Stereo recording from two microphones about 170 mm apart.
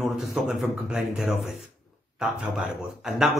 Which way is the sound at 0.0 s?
Centre (ahead or behind).